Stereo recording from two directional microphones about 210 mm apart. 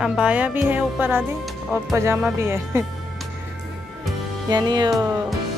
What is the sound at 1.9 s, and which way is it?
Speech, 15° right (ahead or behind).